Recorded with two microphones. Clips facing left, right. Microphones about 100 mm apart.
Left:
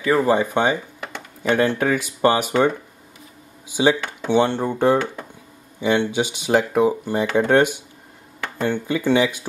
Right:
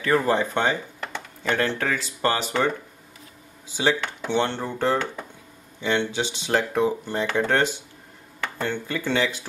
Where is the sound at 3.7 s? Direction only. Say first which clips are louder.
Left 5 dB; 15° left (ahead or behind).